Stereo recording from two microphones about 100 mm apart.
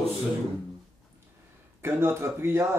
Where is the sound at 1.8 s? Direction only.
25° right (ahead or behind).